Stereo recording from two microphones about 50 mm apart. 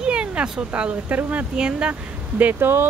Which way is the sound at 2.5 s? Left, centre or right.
Right.